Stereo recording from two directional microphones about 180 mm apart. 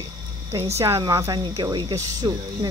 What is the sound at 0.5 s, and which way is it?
Speech, 35° right (ahead or behind).